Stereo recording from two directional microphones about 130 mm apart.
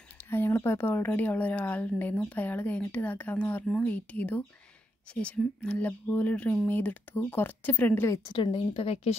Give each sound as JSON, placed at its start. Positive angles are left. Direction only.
{"t": 0.2, "sound": "speech", "side_deg": 15}
{"t": 8.3, "sound": "speech", "side_deg": 40}